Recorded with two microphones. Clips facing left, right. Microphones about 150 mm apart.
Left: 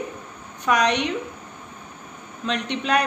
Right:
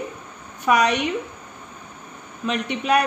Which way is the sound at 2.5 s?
10° right (ahead or behind).